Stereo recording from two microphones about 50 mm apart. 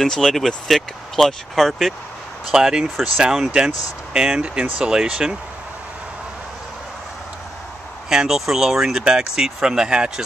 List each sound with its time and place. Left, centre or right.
0.0 s speech: centre
2.4 s speech: centre
8.1 s speech: centre